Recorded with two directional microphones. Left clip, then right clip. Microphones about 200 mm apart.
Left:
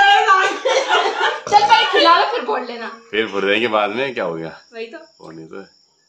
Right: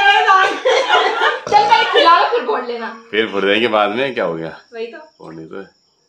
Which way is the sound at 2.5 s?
50° left (ahead or behind).